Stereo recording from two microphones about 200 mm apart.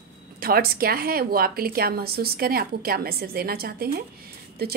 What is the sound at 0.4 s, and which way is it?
Speech, 50° right (ahead or behind).